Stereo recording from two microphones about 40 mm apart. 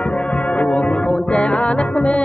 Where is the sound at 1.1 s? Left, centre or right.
Left.